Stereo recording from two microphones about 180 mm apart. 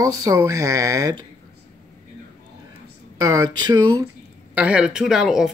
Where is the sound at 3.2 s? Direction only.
20° right (ahead or behind).